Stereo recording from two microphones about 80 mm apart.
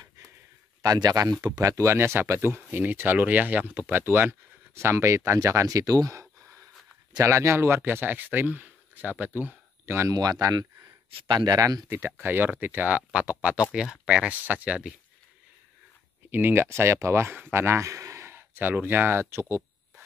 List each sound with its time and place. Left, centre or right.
0.8 s speech: right
1.6 s speech: right
7.2 s speech: right
10.0 s speech: right
11.9 s speech: right; by 15.0 s centre
16.3 s speech: right